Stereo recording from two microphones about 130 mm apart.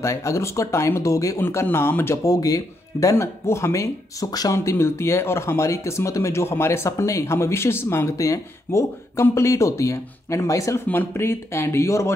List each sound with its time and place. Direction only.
0.0 s speech: 25° left (ahead or behind)